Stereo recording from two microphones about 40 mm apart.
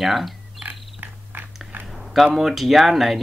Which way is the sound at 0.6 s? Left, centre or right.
Right.